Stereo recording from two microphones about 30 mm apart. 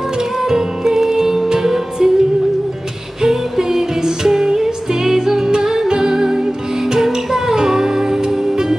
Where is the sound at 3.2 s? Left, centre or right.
Centre.